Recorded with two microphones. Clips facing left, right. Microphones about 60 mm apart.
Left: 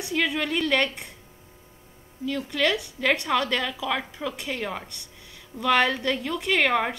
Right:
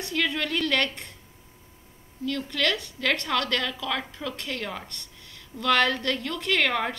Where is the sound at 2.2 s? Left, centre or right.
Centre.